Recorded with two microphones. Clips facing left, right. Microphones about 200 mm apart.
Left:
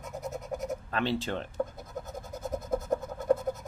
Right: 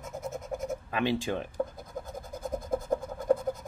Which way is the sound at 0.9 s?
15° right (ahead or behind).